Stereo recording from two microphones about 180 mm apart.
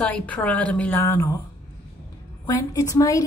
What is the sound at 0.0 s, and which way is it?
A woman's voice, 10° left (ahead or behind).